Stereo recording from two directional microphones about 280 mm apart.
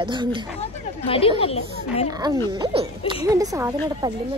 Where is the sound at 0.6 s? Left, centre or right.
Centre.